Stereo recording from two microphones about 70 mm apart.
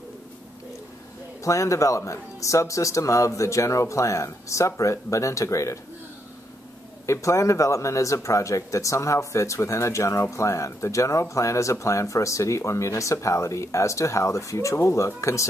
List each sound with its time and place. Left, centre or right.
1.4 s speech: left
7.1 s speech: left